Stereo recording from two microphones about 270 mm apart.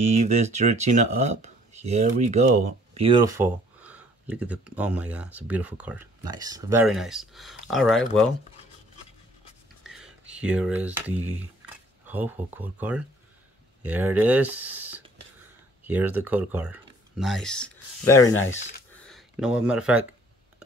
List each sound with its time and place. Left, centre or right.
0.1 s speech: right; by 8.3 s centre
9.8 s speech: centre
18.3 s speech: left
18.9 s a sound: centre